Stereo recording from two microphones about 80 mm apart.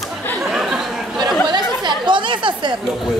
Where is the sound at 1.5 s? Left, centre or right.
Right.